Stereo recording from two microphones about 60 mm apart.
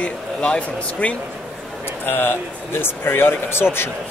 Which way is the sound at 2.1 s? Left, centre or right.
Left.